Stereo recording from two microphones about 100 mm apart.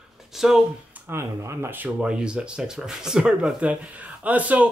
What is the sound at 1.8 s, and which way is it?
Speech, 10° right (ahead or behind).